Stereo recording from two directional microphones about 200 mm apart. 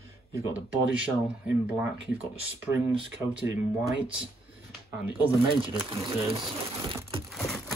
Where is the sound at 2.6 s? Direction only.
5° right (ahead or behind).